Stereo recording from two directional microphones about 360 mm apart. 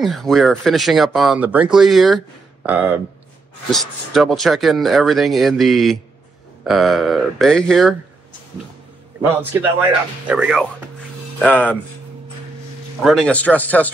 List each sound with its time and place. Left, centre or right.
0.0 s speech: centre
4.1 s speech: centre
9.2 s speech: centre
13.0 s speech: centre